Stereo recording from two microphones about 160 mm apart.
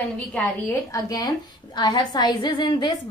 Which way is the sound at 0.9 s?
20° left (ahead or behind).